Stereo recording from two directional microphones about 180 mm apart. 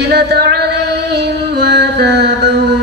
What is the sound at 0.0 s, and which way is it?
Music, 65° right (ahead or behind).